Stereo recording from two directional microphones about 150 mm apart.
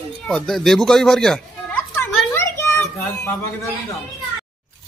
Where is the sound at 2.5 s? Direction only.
20° left (ahead or behind).